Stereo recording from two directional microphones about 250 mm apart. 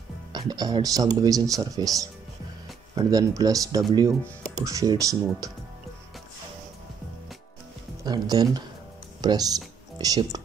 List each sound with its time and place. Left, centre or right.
0.3 s speech: centre
8.0 s speech: centre